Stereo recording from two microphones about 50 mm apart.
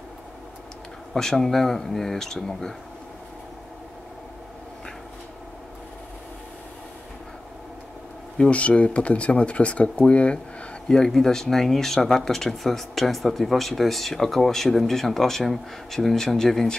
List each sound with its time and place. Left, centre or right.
1.1 s speech: centre
8.4 s speech: left
10.9 s speech: centre